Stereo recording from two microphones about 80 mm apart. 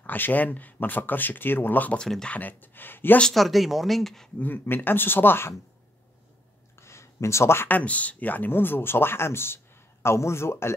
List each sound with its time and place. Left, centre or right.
0.0 s speech: left
2.0 s speech: centre
2.3 s speech: left
3.2 s speech: centre
4.4 s speech: left
6.8 s a man's voice: left